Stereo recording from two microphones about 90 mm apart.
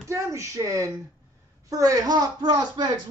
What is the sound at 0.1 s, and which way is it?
Speech, 35° right (ahead or behind).